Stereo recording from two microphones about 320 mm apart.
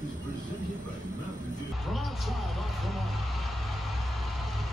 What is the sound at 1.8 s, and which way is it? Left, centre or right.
Speech, centre.